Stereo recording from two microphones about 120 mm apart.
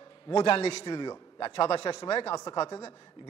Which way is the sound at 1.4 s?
50° left (ahead or behind).